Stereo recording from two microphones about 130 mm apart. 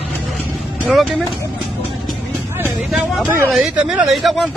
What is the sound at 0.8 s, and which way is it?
Speech, centre (ahead or behind).